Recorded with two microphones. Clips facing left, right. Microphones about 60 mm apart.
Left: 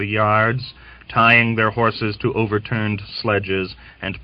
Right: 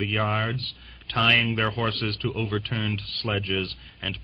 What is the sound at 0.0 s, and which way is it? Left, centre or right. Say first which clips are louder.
Speech: left 9 dB; left.